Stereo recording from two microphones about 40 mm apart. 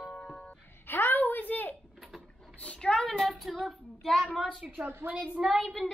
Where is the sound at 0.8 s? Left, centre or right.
Left.